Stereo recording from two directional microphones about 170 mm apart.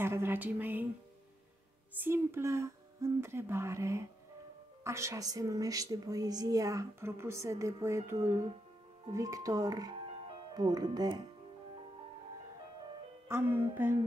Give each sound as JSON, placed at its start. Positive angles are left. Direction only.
{"t": 0.0, "sound": "speech", "side_deg": -15}
{"t": 2.0, "sound": "speech", "side_deg": -15}
{"t": 13.3, "sound": "speech", "side_deg": -10}